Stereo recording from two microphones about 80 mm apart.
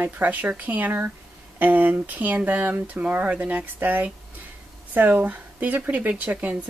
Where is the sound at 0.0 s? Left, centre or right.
Right.